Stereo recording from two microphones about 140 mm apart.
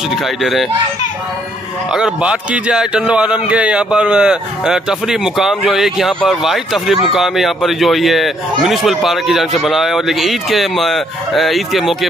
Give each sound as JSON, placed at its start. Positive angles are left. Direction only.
{"t": 0.1, "sound": "a man's voice", "side_deg": 0}
{"t": 1.9, "sound": "a man's voice", "side_deg": -5}